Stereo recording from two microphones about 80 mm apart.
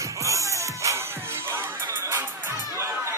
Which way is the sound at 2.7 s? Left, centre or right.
Right.